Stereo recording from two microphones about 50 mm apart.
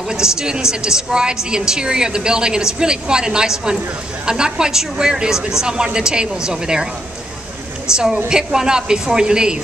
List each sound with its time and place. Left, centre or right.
0.1 s a woman's voice: centre
7.9 s a woman's voice: centre